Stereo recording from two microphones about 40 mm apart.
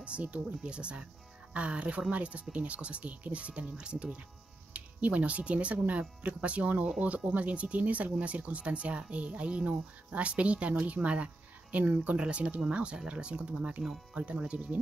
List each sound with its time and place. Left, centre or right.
0.0 s speech: right
4.7 s speech: right
11.7 s speech: right
12.2 s speech: right